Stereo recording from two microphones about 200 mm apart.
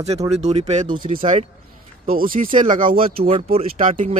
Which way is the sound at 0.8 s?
25° right (ahead or behind).